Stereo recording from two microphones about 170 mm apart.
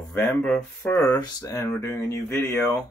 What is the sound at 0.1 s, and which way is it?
Speech, 15° left (ahead or behind).